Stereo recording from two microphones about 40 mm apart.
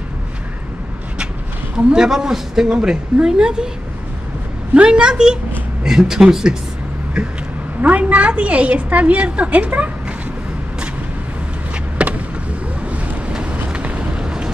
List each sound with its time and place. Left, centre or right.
2.0 s a woman's voice: centre
4.8 s a woman's voice: right
7.8 s a woman's voice: right
12.0 s a sound: right
13.3 s vehicle: right